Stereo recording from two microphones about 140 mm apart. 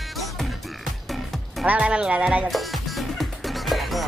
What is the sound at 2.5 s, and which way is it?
Music, centre (ahead or behind).